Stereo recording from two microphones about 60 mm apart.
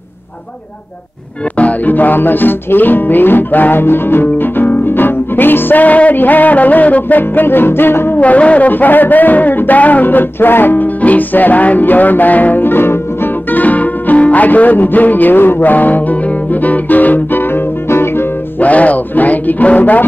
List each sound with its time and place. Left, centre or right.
1.6 s music: left
8.2 s speech: left
18.6 s music: left